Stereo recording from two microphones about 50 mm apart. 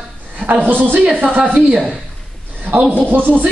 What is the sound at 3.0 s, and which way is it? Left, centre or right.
Speech, right.